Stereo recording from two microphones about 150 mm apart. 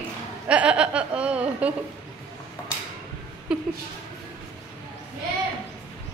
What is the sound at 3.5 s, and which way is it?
Speech, 5° right (ahead or behind).